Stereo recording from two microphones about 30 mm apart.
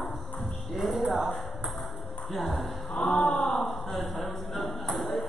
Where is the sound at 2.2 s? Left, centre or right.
Centre.